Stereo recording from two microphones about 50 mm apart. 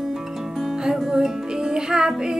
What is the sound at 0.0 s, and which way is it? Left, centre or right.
Music, centre.